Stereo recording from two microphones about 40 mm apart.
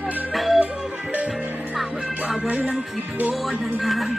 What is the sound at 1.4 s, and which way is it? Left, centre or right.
Music, right.